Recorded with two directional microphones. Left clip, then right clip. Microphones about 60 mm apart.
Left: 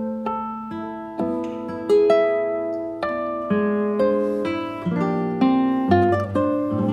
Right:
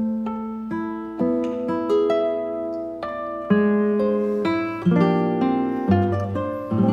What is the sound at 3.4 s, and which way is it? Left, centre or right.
Music, centre.